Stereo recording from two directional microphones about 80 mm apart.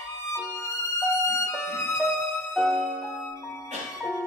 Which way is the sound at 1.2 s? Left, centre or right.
Left.